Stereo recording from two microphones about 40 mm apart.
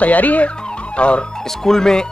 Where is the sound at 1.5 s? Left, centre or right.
Centre.